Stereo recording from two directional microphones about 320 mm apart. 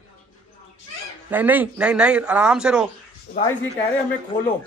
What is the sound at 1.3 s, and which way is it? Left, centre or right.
A man's voice, centre.